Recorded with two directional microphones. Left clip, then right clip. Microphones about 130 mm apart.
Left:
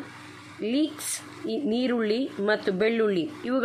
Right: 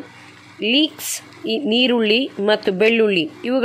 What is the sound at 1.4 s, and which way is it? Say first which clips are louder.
A woman's voice: right 10 dB; 15° right (ahead or behind).